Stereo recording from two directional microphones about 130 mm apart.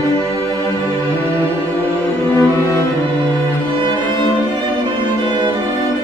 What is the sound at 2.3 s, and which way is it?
Music, 25° left (ahead or behind).